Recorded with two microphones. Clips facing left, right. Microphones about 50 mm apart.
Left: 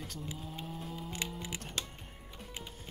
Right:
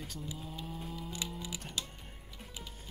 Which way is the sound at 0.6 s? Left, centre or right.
Centre.